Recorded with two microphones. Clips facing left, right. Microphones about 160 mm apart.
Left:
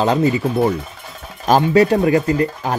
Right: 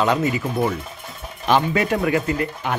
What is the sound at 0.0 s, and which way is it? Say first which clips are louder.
Speech: left 4 dB; 30° left (ahead or behind).